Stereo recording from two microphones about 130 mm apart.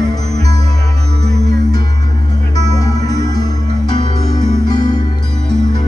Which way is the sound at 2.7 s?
30° left (ahead or behind).